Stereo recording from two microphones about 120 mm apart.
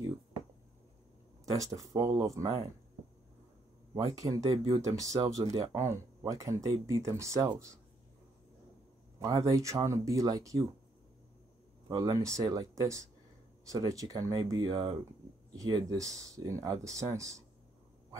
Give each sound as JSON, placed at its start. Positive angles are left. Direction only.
{"t": 1.4, "sound": "speech", "side_deg": -30}
{"t": 4.2, "sound": "speech", "side_deg": -30}
{"t": 4.5, "sound": "speech", "side_deg": -50}
{"t": 4.8, "sound": "speech", "side_deg": -30}
{"t": 9.2, "sound": "speech", "side_deg": -25}
{"t": 11.9, "sound": "speech", "side_deg": -30}